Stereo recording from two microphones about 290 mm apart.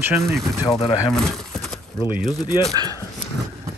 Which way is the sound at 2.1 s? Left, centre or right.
Centre.